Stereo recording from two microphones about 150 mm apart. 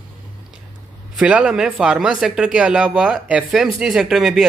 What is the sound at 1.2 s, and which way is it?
Speech, 10° right (ahead or behind).